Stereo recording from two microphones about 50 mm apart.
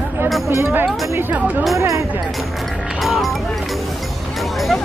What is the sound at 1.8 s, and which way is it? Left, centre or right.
Speech, right.